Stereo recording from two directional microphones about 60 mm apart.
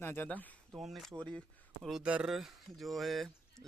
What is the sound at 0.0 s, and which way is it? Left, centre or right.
Speech, left.